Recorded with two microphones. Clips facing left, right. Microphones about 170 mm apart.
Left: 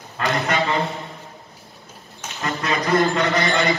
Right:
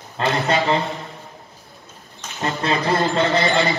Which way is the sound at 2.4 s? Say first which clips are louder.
Right 2 dB; 30° right (ahead or behind).